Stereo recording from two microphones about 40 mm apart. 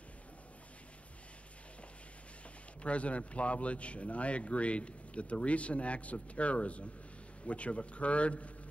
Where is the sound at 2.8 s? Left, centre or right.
Left.